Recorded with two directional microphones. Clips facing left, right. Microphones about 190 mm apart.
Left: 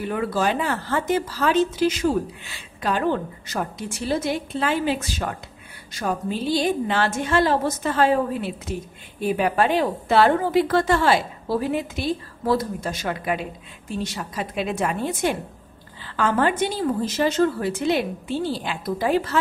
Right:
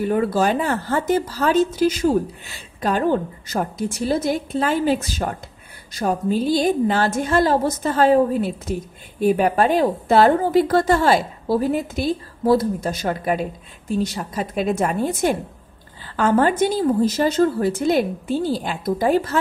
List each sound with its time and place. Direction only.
0.0 s a woman's voice: 40° right (ahead or behind)